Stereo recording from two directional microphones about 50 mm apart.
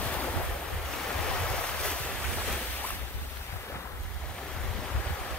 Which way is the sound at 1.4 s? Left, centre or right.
Centre.